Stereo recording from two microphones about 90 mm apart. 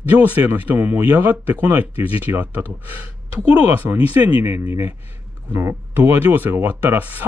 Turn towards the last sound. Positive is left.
turn(degrees=-20)  # may be behind; listen again after turning